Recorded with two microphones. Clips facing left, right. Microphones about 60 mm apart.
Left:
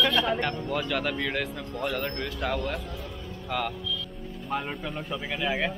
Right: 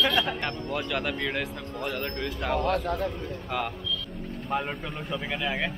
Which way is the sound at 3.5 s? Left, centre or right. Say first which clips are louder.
Left 2 dB; centre.